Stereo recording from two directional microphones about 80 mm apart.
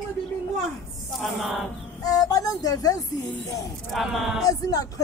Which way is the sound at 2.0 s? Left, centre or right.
Left.